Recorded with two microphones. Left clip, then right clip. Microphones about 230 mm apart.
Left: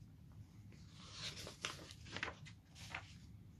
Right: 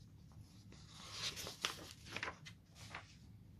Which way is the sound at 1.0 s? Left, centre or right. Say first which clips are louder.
Right 4 dB; centre.